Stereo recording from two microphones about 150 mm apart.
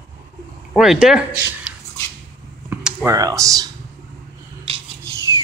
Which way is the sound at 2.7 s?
15° right (ahead or behind).